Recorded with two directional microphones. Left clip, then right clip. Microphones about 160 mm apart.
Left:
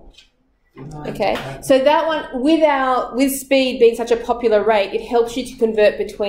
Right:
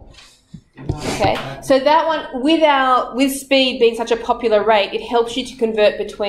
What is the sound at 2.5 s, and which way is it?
A woman's voice, 10° left (ahead or behind).